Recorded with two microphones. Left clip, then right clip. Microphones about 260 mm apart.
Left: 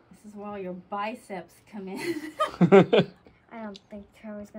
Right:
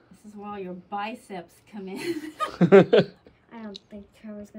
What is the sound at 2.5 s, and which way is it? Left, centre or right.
Speech, left.